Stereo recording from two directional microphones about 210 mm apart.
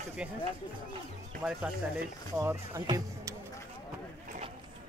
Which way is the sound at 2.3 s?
15° right (ahead or behind).